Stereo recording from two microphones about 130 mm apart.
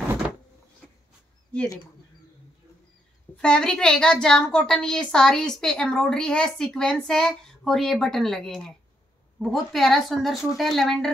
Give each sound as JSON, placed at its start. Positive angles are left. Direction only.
{"t": 3.3, "sound": "a woman's voice", "side_deg": 5}